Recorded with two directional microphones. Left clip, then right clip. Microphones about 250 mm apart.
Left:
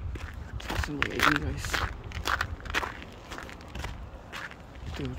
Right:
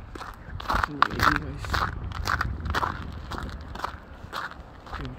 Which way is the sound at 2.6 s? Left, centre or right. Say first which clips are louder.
Right 4 dB; centre.